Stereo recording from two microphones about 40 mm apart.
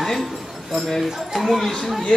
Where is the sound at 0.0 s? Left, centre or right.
Centre.